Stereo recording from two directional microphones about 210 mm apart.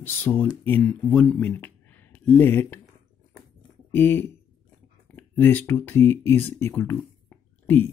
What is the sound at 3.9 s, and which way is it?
Speech, 10° left (ahead or behind).